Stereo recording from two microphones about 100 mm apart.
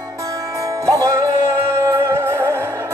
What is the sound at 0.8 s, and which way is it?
Music, 35° right (ahead or behind).